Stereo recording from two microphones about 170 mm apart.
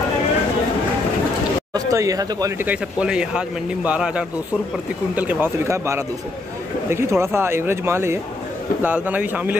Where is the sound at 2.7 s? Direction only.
5° right (ahead or behind).